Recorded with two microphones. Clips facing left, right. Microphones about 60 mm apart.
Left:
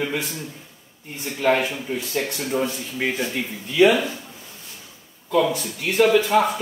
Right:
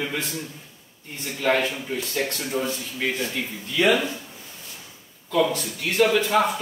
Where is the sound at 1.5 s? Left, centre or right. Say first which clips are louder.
Left 1 dB; centre.